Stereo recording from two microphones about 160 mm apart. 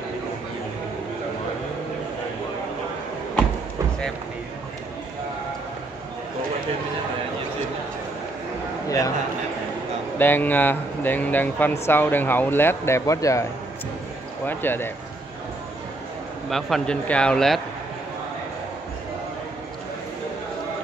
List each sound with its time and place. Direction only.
8.8 s a sound: 20° left (ahead or behind)
10.1 s speech: 10° left (ahead or behind)
16.4 s speech: centre (ahead or behind)